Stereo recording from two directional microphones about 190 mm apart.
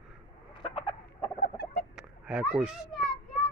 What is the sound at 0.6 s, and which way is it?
Chicken, 30° left (ahead or behind).